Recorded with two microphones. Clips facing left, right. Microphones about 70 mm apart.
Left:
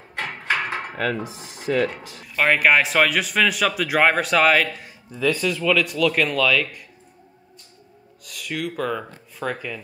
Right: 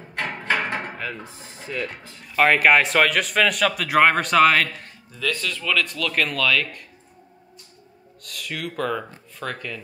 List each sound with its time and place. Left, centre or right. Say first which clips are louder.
0.5 s hammer: even; centre
0.9 s speech: left 7 dB; left
2.2 s speech: right 1 dB; centre
5.1 s speech: left 5 dB; centre
8.2 s speech: left 3 dB; centre